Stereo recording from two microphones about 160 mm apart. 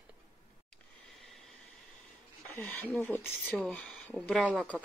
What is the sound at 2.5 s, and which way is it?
Speech, 10° left (ahead or behind).